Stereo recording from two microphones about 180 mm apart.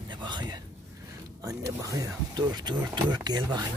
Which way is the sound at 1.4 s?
20° right (ahead or behind).